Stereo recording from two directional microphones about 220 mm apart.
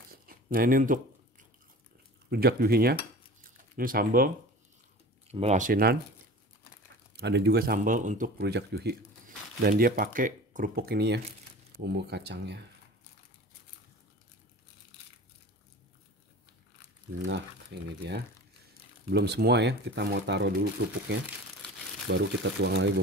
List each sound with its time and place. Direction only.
0.1 s a sound: 40° right (ahead or behind)
2.2 s speech: 45° right (ahead or behind)
3.4 s a sound: 40° right (ahead or behind)
5.3 s speech: 30° right (ahead or behind)
7.2 s speech: 50° right (ahead or behind)
17.7 s speech: 50° right (ahead or behind)
19.0 s speech: 50° right (ahead or behind)
22.0 s speech: 55° right (ahead or behind)